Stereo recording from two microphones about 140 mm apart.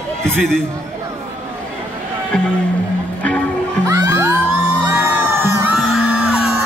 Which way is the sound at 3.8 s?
25° right (ahead or behind).